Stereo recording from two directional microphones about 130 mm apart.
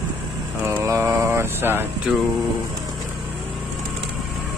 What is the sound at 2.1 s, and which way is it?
Speech, centre (ahead or behind).